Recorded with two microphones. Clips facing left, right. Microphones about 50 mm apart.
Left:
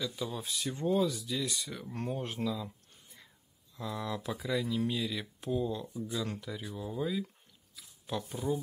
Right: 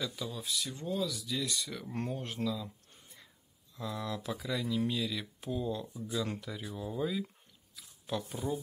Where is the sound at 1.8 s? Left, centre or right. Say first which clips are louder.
Left 1 dB; centre.